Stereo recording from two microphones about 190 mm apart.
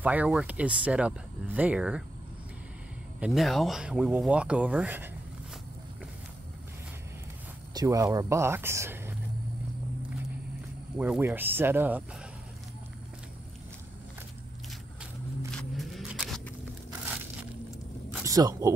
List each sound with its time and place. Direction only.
0.0 s speech: 5° right (ahead or behind)
3.2 s speech: centre (ahead or behind)
7.7 s speech: 15° right (ahead or behind)
11.0 s speech: 10° right (ahead or behind)
15.5 s a sound: centre (ahead or behind)
18.2 s a sound: 20° right (ahead or behind)